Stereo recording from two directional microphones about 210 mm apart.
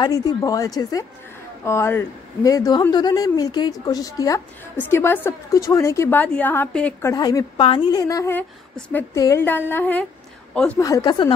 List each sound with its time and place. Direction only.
0.0 s a woman's voice: 20° left (ahead or behind)